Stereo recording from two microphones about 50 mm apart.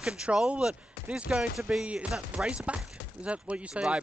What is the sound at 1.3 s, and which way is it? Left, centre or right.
Speech, centre.